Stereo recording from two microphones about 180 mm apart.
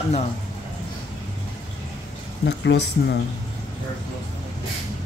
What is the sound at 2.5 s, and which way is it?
Speech, 70° left (ahead or behind).